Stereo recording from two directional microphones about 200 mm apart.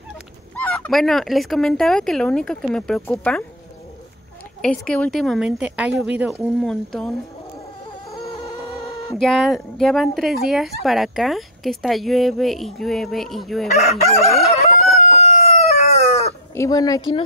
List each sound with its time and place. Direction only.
0.6 s speech: 5° left (ahead or behind)
4.6 s speech: 5° left (ahead or behind)
9.1 s speech: centre (ahead or behind)
15.1 s chicken: 35° left (ahead or behind)
16.5 s a woman's voice: 15° left (ahead or behind)